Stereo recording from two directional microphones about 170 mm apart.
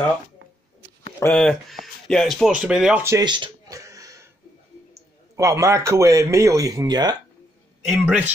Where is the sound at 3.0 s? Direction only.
25° right (ahead or behind).